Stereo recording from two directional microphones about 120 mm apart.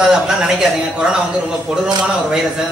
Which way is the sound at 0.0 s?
5° right (ahead or behind).